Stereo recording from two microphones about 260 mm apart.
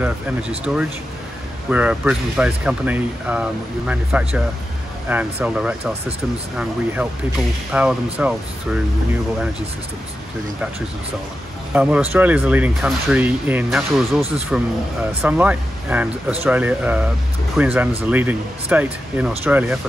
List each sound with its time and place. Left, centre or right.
0.7 s speech: centre
7.7 s speech: centre
11.7 s speech: centre